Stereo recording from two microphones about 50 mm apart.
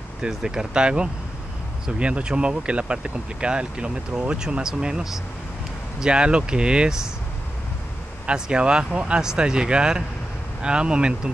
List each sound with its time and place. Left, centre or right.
0.3 s speech: centre
8.3 s speech: centre